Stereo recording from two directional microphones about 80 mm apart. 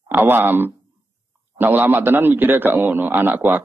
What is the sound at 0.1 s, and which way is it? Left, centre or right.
A man's voice, right.